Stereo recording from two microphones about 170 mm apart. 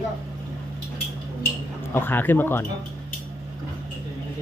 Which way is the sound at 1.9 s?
10° left (ahead or behind).